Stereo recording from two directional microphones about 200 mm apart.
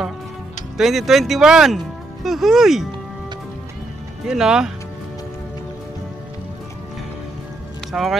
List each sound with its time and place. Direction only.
0.7 s speech: centre (ahead or behind)
4.3 s speech: 5° right (ahead or behind)
7.9 s speech: centre (ahead or behind)